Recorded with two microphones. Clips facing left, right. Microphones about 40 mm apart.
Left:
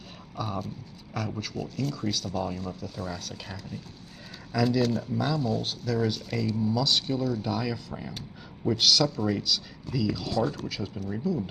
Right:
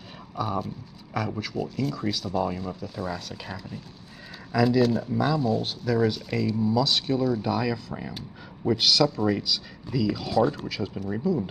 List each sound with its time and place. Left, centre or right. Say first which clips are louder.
0.4 s speech: right 4 dB; centre